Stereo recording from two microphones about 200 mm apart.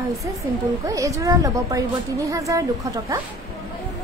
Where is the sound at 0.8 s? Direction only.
15° right (ahead or behind).